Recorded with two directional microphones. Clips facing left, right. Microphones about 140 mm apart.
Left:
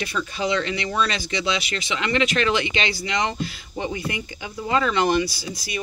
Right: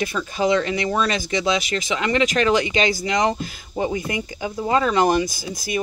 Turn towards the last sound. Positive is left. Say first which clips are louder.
# right 5 dB
turn(degrees=-50)  # may be behind; listen again after turning